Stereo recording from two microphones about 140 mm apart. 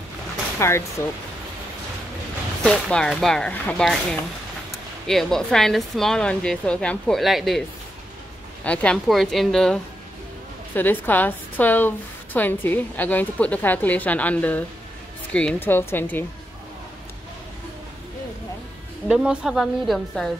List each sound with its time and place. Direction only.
0.6 s speech: 20° left (ahead or behind)
2.6 s speech: 5° left (ahead or behind)
8.6 s speech: 5° left (ahead or behind)
10.7 s a woman's voice: 15° left (ahead or behind)
19.0 s speech: 5° right (ahead or behind)